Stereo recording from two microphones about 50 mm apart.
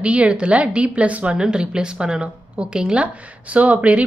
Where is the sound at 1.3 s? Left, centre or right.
Centre.